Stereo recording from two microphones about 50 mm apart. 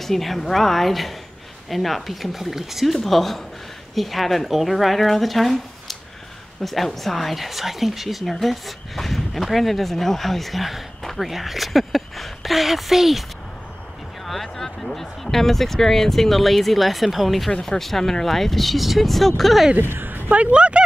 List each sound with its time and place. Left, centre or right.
0.0 s speech: centre
14.2 s speech: centre
19.8 s a woman's voice: right